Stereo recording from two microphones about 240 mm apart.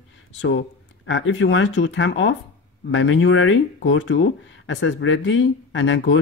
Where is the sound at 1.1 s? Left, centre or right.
Left.